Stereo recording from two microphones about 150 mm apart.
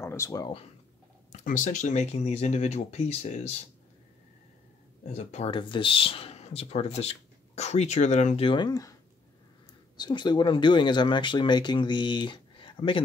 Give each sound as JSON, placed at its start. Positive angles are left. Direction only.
{"t": 0.0, "sound": "speech", "side_deg": 20}
{"t": 1.3, "sound": "speech", "side_deg": 60}
{"t": 5.0, "sound": "speech", "side_deg": 50}
{"t": 5.5, "sound": "speech", "side_deg": 35}
{"t": 8.5, "sound": "speech", "side_deg": 30}
{"t": 9.9, "sound": "speech", "side_deg": 30}